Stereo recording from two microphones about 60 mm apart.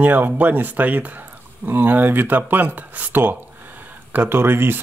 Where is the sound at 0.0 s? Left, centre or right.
Right.